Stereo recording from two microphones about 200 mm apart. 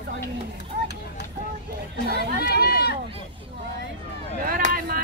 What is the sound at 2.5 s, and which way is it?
Speech, 50° left (ahead or behind).